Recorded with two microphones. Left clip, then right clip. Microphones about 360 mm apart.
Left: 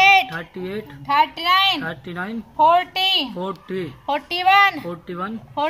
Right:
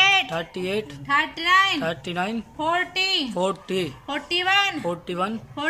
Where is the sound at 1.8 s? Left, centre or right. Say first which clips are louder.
Right 2 dB; centre.